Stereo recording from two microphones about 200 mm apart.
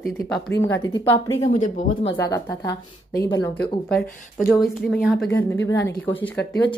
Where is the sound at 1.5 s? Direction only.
40° left (ahead or behind).